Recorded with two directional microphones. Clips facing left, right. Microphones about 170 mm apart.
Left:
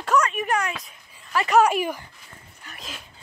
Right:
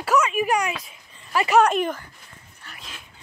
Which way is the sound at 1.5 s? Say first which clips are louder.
Even; 10° left (ahead or behind).